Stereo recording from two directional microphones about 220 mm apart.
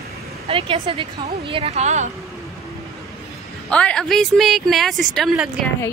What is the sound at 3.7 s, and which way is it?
A woman's voice, 5° left (ahead or behind).